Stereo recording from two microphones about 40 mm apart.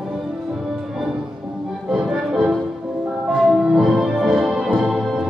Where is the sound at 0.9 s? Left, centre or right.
Centre.